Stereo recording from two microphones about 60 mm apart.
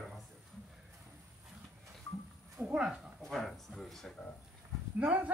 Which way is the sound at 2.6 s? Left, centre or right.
Right.